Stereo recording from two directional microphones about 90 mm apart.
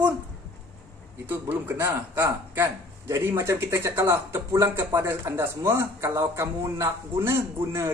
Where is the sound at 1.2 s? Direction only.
20° right (ahead or behind).